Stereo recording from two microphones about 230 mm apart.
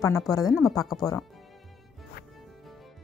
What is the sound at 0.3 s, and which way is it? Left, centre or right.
Speech, centre.